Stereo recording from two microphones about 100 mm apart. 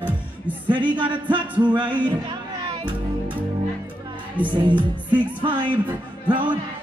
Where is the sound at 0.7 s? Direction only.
55° right (ahead or behind).